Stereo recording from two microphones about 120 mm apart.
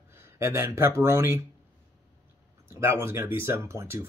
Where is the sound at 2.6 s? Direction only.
20° right (ahead or behind).